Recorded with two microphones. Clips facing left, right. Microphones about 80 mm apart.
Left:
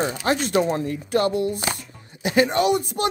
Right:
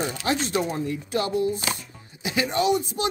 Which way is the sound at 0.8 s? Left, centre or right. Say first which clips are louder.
Left 5 dB; left.